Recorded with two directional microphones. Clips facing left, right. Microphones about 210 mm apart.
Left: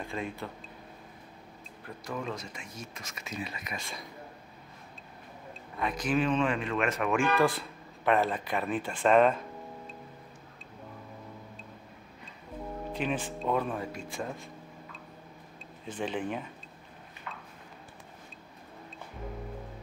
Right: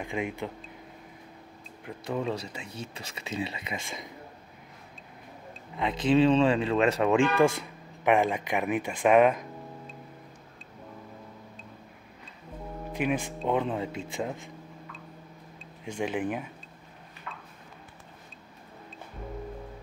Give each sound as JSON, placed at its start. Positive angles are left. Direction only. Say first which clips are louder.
{"t": 0.0, "sound": "speech", "louder": "right 4 dB", "side_deg": -15}
{"t": 1.9, "sound": "speech", "louder": "right 5 dB", "side_deg": -25}
{"t": 5.8, "sound": "speech", "louder": "right 6 dB", "side_deg": -25}
{"t": 7.3, "sound": "speech", "louder": "right 3 dB", "side_deg": -20}
{"t": 12.9, "sound": "speech", "louder": "right 4 dB", "side_deg": -10}
{"t": 15.8, "sound": "speech", "louder": "right 3 dB", "side_deg": -10}